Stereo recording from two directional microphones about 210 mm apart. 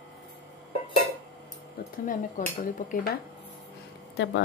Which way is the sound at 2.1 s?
40° left (ahead or behind).